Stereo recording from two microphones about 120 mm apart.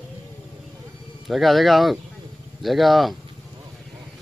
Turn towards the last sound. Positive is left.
turn(degrees=0)  # may be behind; listen again after turning